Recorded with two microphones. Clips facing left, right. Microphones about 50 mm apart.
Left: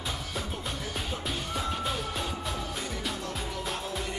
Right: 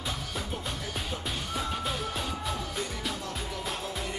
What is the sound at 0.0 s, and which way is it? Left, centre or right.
Music, centre.